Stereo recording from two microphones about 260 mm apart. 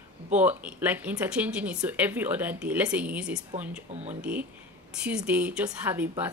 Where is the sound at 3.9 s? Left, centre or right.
Right.